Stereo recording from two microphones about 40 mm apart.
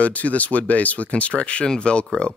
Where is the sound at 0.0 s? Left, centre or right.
Left.